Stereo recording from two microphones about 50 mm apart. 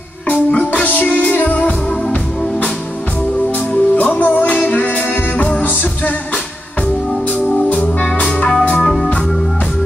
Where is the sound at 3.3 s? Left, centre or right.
Left.